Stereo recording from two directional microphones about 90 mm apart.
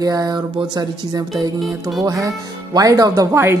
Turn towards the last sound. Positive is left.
turn(degrees=-30)  # may be behind; listen again after turning